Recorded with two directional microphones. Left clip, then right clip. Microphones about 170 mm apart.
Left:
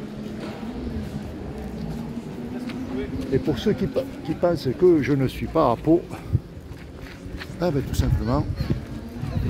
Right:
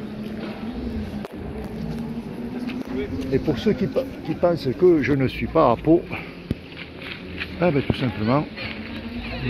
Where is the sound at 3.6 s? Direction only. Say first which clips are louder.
Right 1 dB; 20° left (ahead or behind).